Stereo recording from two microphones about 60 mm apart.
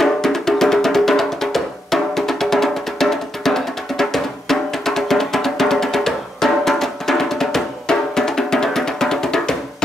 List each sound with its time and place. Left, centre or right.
0.0 s music: centre